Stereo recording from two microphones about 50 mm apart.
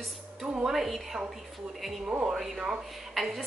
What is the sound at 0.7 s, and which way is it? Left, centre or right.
Speech, centre.